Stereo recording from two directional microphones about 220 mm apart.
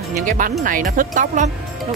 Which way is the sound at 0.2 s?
35° right (ahead or behind).